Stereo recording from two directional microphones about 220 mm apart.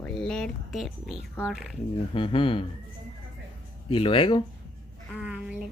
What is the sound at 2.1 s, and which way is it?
Speech, 25° left (ahead or behind).